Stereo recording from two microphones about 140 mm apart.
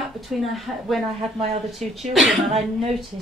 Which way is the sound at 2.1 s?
Centre (ahead or behind).